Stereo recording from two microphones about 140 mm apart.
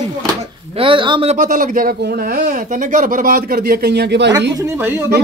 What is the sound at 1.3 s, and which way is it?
Speech, 70° right (ahead or behind).